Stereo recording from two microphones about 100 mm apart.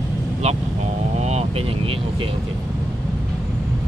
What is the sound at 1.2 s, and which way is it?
Vehicle, 90° right.